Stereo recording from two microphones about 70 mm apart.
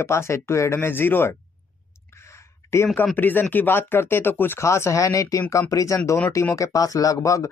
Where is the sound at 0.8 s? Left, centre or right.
Left.